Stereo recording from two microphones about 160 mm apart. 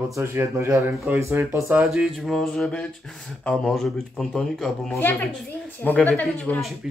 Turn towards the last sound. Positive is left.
turn(degrees=5)  # may be behind; listen again after turning